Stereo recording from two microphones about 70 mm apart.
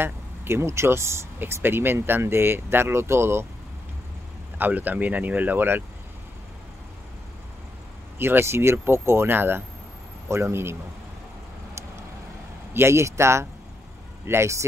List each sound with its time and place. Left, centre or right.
0.0 s speech: right
4.6 s speech: right
8.2 s speech: right
12.7 s speech: right